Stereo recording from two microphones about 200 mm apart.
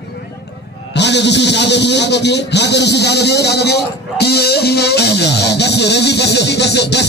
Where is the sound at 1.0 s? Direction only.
60° left (ahead or behind).